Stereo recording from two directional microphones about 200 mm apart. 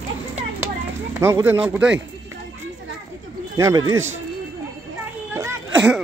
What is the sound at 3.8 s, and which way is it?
Speech, 85° right.